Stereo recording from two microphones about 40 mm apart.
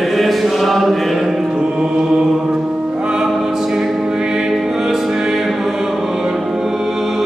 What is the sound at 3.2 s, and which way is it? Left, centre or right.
Music, centre.